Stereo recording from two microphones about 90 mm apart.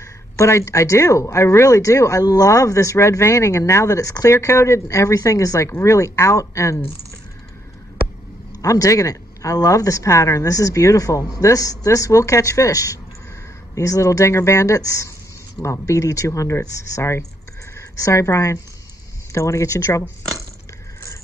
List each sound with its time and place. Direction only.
0.0 s speech: 35° left (ahead or behind)
8.5 s speech: 40° left (ahead or behind)